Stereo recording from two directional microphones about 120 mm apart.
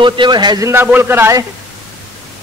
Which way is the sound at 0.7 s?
15° right (ahead or behind).